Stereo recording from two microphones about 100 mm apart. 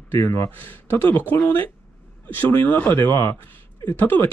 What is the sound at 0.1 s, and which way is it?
Speech, 25° left (ahead or behind).